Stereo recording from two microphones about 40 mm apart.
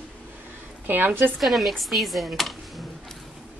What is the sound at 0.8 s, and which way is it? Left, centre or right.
Speech, right.